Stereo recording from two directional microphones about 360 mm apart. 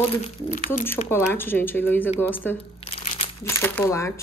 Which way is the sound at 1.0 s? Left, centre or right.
Centre.